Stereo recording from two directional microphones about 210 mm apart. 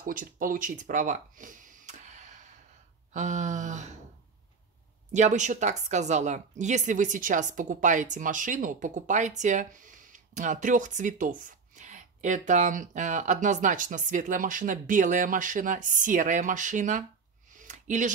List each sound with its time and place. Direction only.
0.0 s a woman's voice: 40° right (ahead or behind)
5.1 s a woman's voice: 35° right (ahead or behind)
17.6 s a sound: 35° right (ahead or behind)